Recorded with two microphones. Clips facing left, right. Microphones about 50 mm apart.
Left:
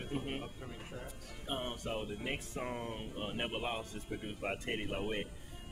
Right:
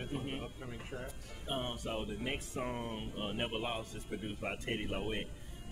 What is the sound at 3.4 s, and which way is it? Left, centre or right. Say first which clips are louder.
Speech: even; centre.